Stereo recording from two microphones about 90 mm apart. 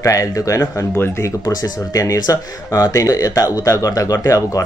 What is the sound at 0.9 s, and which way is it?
Speech, 25° left (ahead or behind).